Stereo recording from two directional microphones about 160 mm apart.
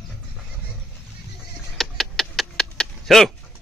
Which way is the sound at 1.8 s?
Centre (ahead or behind).